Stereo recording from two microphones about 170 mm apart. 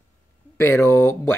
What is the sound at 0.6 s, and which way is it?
Speech, 15° left (ahead or behind).